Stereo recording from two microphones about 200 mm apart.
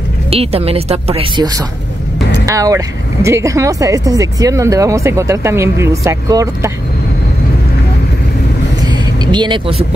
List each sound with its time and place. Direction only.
0.3 s a woman's voice: 30° right (ahead or behind)
8.8 s vehicle: 20° right (ahead or behind)